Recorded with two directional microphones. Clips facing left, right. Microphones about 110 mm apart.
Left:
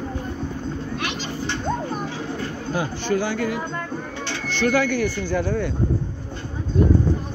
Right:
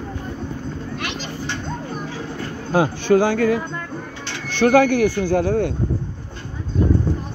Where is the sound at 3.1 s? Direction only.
60° right (ahead or behind).